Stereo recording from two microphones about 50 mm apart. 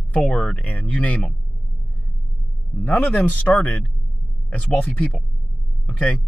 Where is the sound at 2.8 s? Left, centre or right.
Left.